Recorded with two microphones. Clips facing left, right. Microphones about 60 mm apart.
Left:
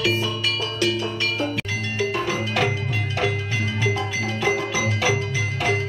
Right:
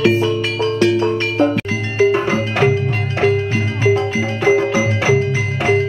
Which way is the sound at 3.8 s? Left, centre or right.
Right.